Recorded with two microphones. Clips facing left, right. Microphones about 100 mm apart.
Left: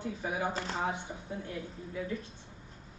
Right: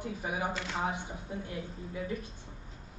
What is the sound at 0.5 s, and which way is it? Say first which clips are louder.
Speech: left 1 dB; 35° left (ahead or behind).